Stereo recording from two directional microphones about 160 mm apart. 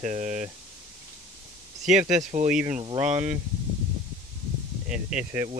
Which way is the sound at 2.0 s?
50° right (ahead or behind).